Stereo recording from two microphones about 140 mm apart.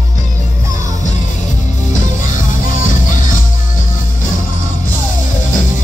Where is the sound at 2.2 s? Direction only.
70° left (ahead or behind).